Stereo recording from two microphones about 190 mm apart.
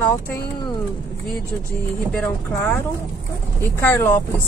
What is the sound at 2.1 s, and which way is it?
Speech, 5° left (ahead or behind).